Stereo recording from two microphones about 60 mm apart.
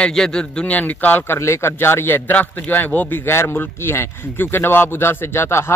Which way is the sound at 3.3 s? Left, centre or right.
Left.